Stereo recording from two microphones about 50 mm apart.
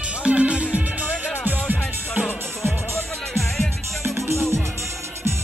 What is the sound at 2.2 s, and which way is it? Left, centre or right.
Music, centre.